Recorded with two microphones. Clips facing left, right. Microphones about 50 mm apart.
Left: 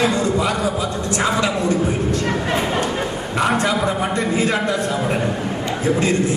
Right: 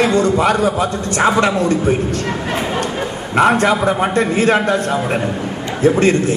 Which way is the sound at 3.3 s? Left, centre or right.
Right.